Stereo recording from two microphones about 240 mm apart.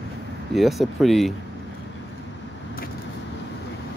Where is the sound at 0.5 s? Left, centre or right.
Centre.